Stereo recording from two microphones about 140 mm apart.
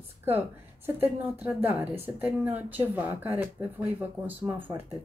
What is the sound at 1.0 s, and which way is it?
Speech, 15° right (ahead or behind).